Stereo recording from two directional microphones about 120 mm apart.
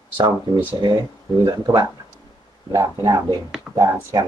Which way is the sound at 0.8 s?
40° right (ahead or behind).